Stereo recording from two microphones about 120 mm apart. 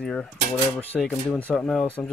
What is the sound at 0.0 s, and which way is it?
Speech, 5° left (ahead or behind).